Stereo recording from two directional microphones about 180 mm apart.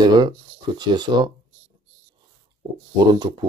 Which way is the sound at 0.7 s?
25° right (ahead or behind).